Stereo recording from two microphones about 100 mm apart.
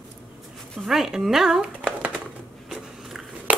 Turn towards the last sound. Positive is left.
turn(degrees=-5)  # may be behind; listen again after turning